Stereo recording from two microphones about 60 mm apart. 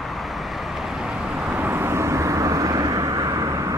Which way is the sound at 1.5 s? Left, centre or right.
Right.